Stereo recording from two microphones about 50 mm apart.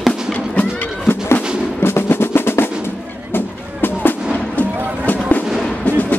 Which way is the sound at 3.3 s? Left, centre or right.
Left.